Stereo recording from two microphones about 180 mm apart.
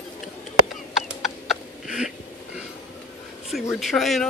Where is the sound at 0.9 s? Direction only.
Centre (ahead or behind).